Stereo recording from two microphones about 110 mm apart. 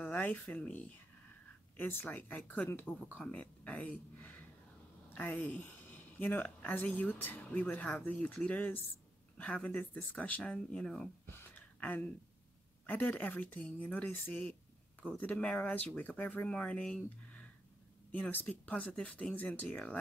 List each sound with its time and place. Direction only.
0.0 s speech: 15° left (ahead or behind)
11.2 s a sound: 20° left (ahead or behind)
12.8 s speech: 15° left (ahead or behind)